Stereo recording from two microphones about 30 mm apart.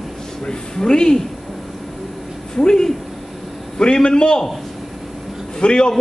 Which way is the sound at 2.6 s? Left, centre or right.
Left.